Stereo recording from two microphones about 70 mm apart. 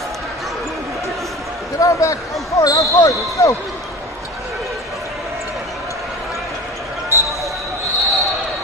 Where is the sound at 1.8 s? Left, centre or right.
Left.